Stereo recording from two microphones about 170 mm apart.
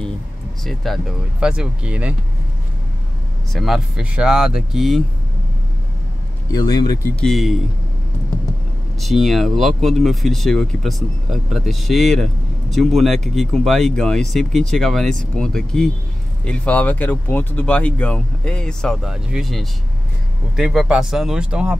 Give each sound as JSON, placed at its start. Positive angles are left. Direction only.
{"t": 0.7, "sound": "speech", "side_deg": 0}
{"t": 3.5, "sound": "speech", "side_deg": 0}
{"t": 6.5, "sound": "speech", "side_deg": 25}
{"t": 7.2, "sound": "speech", "side_deg": 0}
{"t": 9.0, "sound": "speech", "side_deg": 0}